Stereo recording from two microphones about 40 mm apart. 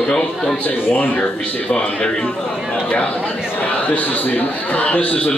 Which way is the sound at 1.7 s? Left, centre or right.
Left.